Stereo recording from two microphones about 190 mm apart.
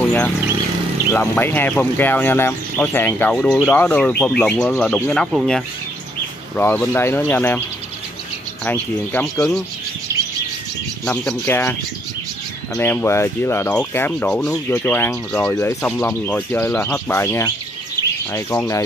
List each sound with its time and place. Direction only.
1.1 s speech: 10° left (ahead or behind)
6.5 s speech: 10° left (ahead or behind)
8.6 s speech: 10° left (ahead or behind)
11.1 s speech: 10° left (ahead or behind)
12.7 s speech: 15° left (ahead or behind)